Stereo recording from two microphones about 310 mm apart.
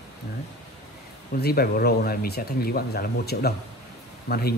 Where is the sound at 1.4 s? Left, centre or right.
Left.